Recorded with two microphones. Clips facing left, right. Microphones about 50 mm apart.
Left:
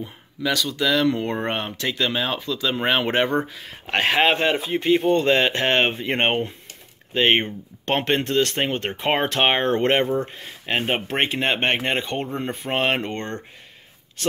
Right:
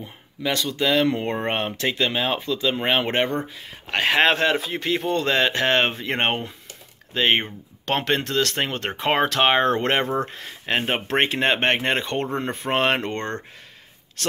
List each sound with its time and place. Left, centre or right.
0.0 s speech: centre
1.5 s speech: right
2.0 s speech: centre
2.7 s speech: centre
3.6 s speech: centre
7.9 s speech: left
10.2 s speech: centre